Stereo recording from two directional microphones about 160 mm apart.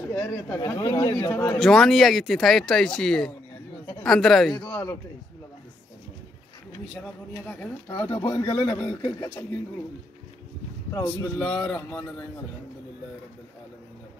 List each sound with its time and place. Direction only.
0.1 s speech: 15° left (ahead or behind)
1.6 s speech: centre (ahead or behind)
4.6 s speech: 15° left (ahead or behind)
7.4 s speech: 10° left (ahead or behind)
8.2 s speech: 20° left (ahead or behind)
10.9 s speech: 20° left (ahead or behind)
11.3 s speech: 5° left (ahead or behind)